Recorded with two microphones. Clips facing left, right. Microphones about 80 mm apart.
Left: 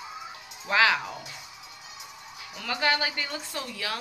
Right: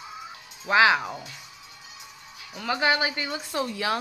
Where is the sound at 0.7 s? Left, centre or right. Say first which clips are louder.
Right 4 dB; centre.